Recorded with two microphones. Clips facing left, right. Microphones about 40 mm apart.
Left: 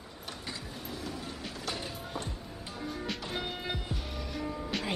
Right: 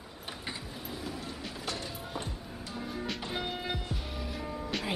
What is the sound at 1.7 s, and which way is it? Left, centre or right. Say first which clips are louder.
Music: even; centre.